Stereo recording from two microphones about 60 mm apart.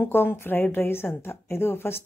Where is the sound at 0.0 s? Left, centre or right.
Left.